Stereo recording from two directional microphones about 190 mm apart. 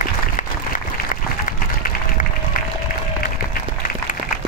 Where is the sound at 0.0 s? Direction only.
45° left (ahead or behind).